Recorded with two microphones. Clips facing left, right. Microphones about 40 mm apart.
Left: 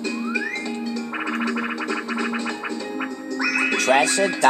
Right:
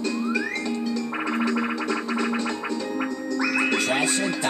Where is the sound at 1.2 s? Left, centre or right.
Centre.